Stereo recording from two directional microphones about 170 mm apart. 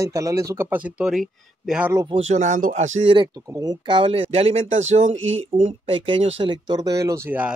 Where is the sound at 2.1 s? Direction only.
45° right (ahead or behind).